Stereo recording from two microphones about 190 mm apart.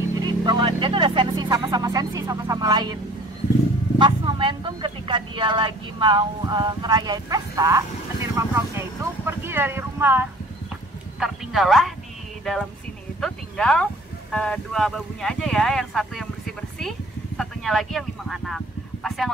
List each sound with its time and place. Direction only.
0.2 s speech: 25° right (ahead or behind)
4.0 s speech: 25° right (ahead or behind); by 11.9 s centre (ahead or behind)
13.2 s speech: 5° left (ahead or behind)